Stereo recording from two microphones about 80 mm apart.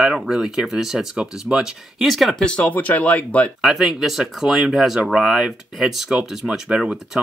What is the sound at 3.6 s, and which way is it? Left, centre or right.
Speech, centre.